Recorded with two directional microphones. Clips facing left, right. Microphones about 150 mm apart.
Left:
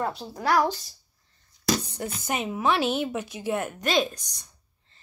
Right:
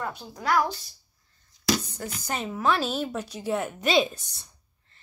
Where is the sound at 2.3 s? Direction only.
15° left (ahead or behind); by 4.5 s 5° right (ahead or behind).